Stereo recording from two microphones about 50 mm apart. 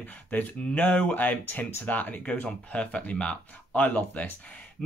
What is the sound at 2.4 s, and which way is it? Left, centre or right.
Speech, left.